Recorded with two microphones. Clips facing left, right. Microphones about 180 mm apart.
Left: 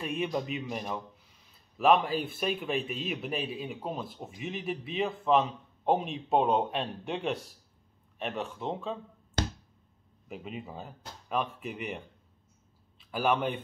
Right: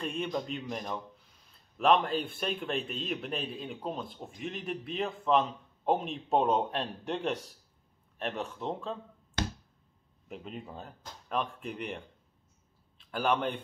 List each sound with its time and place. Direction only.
0.0 s a man's voice: 5° left (ahead or behind)
10.2 s a man's voice: 5° left (ahead or behind)